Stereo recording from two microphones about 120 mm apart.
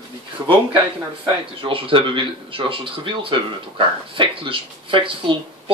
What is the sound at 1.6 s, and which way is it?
Speech, 45° right (ahead or behind).